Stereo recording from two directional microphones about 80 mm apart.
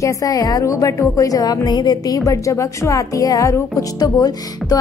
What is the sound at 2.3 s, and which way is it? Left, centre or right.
Speech, left.